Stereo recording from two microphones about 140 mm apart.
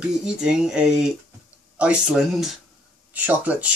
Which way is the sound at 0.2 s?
5° right (ahead or behind).